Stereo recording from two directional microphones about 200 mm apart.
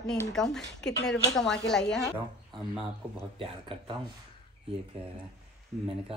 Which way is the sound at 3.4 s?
25° right (ahead or behind).